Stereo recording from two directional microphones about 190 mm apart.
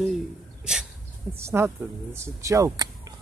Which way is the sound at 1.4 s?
10° right (ahead or behind).